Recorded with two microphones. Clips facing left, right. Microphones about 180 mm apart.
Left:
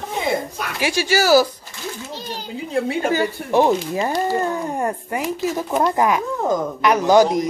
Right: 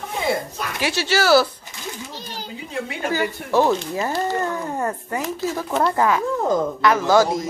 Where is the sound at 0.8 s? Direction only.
10° left (ahead or behind).